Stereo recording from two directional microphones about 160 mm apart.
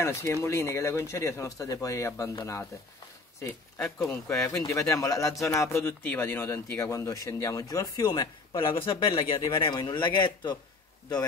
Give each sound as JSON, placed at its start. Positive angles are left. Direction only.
{"t": 0.0, "sound": "speech", "side_deg": 15}